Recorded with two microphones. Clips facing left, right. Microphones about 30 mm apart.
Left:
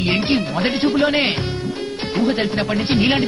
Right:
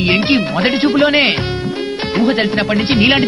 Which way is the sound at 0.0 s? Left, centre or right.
Right.